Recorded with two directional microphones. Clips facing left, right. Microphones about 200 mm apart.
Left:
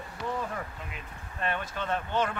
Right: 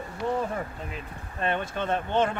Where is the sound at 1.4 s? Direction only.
25° right (ahead or behind).